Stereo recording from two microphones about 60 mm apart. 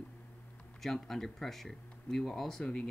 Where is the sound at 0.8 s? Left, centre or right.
Centre.